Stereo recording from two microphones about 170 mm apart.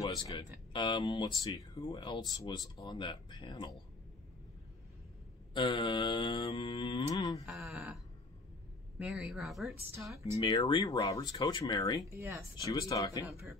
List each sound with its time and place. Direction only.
0.3 s speech: 25° left (ahead or behind)
5.5 s speech: 25° left (ahead or behind)
7.4 s a sound: centre (ahead or behind)
8.9 s a woman's voice: centre (ahead or behind)
9.9 s speech: 15° right (ahead or behind)
10.4 s speech: 25° left (ahead or behind)
12.1 s speech: 15° right (ahead or behind)
12.7 s speech: 20° left (ahead or behind)